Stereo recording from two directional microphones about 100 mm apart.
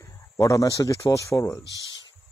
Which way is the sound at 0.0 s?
35° left (ahead or behind).